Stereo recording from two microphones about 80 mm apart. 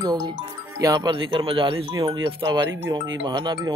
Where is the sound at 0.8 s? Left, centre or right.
Right.